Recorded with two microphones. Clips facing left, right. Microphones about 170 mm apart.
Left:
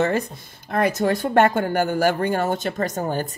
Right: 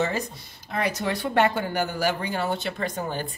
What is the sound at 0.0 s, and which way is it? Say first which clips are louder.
Speech: left 5 dB; 50° left (ahead or behind).